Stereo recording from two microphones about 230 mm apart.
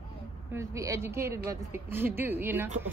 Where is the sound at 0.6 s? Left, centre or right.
Centre.